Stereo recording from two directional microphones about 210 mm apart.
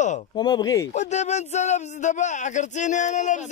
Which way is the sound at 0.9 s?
35° left (ahead or behind).